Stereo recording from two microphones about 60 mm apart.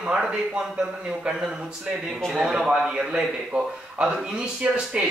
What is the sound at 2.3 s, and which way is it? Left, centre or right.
A man's voice, centre.